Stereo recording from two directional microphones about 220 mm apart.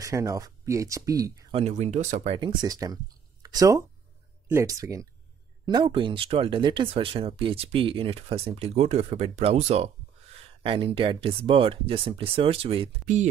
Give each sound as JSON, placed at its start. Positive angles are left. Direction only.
{"t": 0.0, "sound": "speech", "side_deg": -15}
{"t": 1.5, "sound": "speech", "side_deg": -30}